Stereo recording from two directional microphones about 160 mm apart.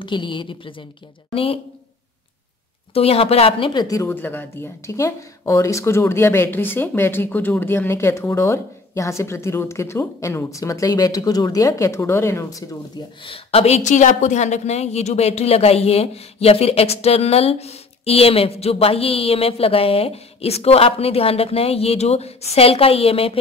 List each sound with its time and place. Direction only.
0.0 s a woman's voice: 30° left (ahead or behind)
2.9 s speech: 40° left (ahead or behind); by 12.6 s 20° left (ahead or behind)
13.2 s a woman's voice: 35° left (ahead or behind)